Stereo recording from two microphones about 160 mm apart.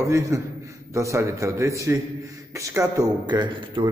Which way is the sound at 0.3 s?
20° right (ahead or behind).